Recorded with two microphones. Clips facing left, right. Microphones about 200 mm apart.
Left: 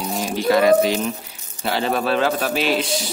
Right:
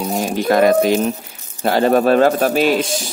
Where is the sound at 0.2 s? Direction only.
50° right (ahead or behind).